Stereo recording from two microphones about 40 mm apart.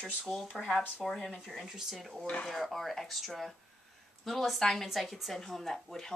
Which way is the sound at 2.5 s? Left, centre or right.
Centre.